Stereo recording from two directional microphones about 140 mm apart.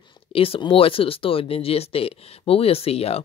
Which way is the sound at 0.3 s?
40° left (ahead or behind).